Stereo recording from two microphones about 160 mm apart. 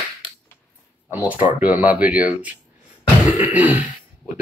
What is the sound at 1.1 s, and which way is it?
Speech, 10° right (ahead or behind).